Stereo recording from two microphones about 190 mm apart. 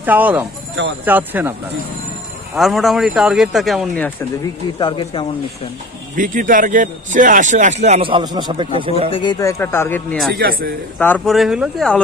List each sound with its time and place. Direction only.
0.0 s speech: 10° right (ahead or behind)
2.5 s speech: centre (ahead or behind)
4.7 s speech: 25° left (ahead or behind)
6.1 s a man's voice: 45° right (ahead or behind); by 8.9 s 25° right (ahead or behind)
9.1 s speech: 25° left (ahead or behind); by 10.3 s 5° left (ahead or behind)
10.3 s a man's voice: 50° right (ahead or behind)
11.0 s speech: 10° left (ahead or behind)